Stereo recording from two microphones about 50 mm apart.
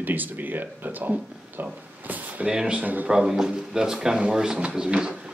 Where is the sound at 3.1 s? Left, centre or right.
Centre.